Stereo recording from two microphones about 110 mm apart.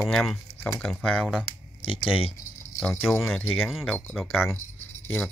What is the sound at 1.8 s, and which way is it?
Speech, 55° left (ahead or behind).